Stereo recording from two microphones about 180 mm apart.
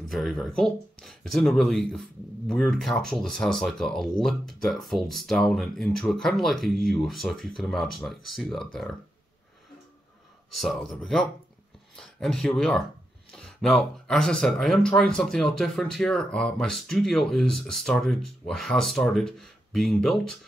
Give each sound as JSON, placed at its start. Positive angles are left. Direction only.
{"t": 0.1, "sound": "speech", "side_deg": 0}
{"t": 10.5, "sound": "speech", "side_deg": 0}